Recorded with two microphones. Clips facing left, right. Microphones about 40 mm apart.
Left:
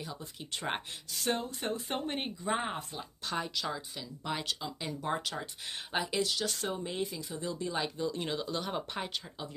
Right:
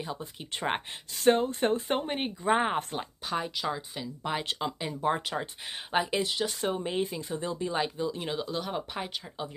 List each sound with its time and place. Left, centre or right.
0.0 s speech: right
1.1 s speech: right
2.0 s speech: centre
2.4 s speech: right
3.3 s speech: centre
4.5 s speech: right
4.7 s speech: right
7.5 s speech: right
8.1 s speech: centre